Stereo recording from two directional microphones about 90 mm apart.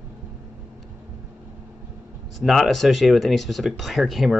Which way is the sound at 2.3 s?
Centre (ahead or behind).